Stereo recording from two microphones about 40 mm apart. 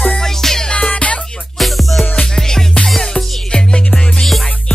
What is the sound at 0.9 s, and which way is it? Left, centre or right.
Music, left.